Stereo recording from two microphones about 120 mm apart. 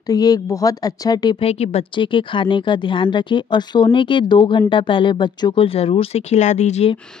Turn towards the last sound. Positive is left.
turn(degrees=70)  # may be behind; listen again after turning